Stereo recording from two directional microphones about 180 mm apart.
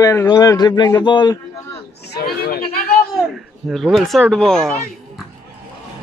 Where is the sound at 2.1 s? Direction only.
60° left (ahead or behind).